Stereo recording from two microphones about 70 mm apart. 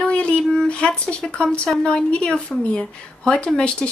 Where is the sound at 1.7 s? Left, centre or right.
Centre.